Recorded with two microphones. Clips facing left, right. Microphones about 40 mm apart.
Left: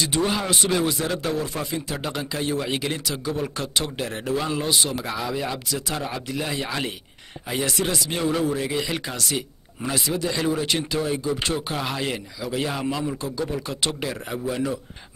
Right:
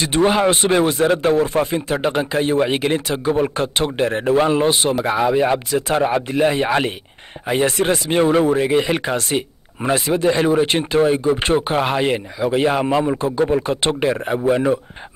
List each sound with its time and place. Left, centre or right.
0.0 s speech: right